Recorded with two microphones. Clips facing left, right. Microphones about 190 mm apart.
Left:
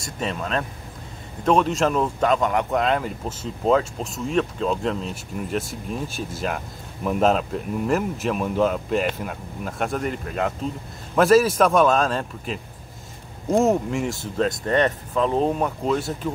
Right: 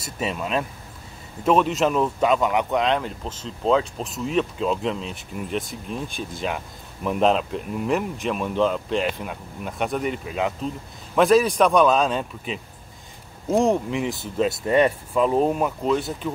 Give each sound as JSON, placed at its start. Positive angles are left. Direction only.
{"t": 0.0, "sound": "speech", "side_deg": -5}